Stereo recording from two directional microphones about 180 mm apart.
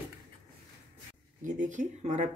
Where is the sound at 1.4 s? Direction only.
45° right (ahead or behind).